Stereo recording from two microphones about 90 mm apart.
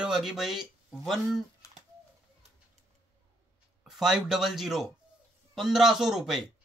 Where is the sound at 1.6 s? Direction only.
35° left (ahead or behind).